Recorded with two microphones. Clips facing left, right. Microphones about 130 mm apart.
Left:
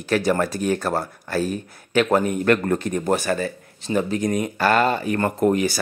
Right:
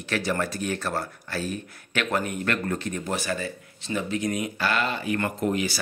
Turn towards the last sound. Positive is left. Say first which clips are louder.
# left 7 dB
turn(degrees=45)  # may be behind; listen again after turning